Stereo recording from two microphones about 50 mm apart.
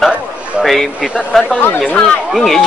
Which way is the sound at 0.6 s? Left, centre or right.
Centre.